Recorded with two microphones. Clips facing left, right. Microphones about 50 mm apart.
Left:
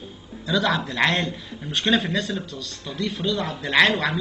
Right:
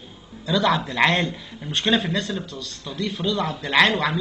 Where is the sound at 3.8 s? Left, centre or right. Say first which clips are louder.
Even; right.